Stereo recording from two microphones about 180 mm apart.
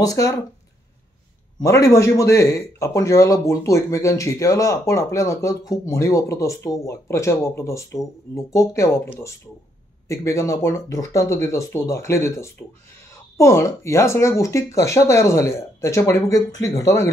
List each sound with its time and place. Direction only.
0.0 s speech: 20° left (ahead or behind)
1.6 s speech: 15° left (ahead or behind)